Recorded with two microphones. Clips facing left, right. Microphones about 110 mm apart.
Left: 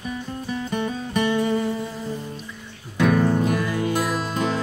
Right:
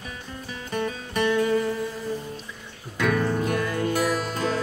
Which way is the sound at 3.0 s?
25° left (ahead or behind).